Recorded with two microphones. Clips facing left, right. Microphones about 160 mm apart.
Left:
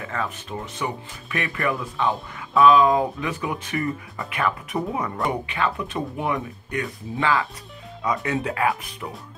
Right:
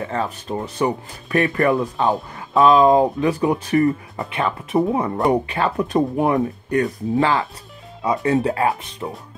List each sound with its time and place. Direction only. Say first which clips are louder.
0.0 s speech: right 5 dB; 30° right (ahead or behind)